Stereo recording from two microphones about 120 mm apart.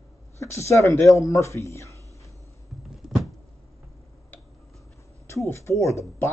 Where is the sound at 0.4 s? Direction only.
20° left (ahead or behind).